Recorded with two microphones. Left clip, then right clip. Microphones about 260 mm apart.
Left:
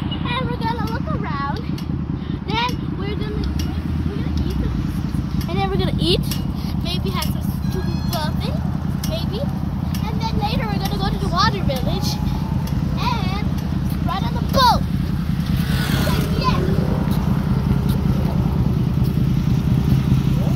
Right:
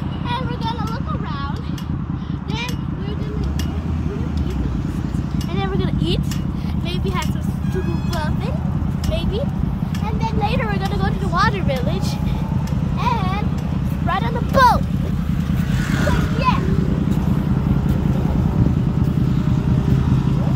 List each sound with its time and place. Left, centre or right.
14.5 s vehicle: centre
15.9 s vehicle: left